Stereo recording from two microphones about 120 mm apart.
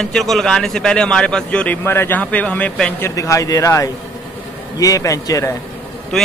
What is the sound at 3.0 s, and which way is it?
Speech, 25° left (ahead or behind).